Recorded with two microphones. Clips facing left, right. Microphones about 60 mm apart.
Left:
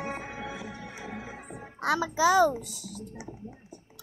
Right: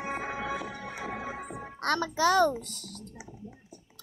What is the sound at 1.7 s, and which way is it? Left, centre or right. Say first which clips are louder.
A child's voice: left 2 dB; centre.